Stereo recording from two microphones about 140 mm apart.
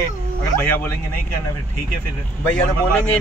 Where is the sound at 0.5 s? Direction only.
15° left (ahead or behind).